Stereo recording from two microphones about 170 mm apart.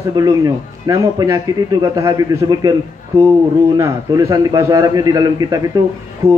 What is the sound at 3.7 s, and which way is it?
A man's voice, 20° right (ahead or behind).